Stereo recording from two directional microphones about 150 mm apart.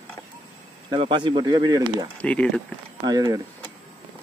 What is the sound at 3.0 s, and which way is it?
Speech, 25° right (ahead or behind).